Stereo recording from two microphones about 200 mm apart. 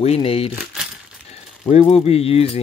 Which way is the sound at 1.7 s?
30° left (ahead or behind).